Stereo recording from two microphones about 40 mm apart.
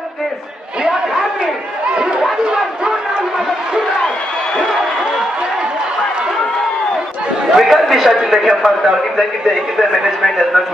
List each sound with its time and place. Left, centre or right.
1.4 s chatter: right
2.4 s crowd: centre
7.5 s a man's voice: centre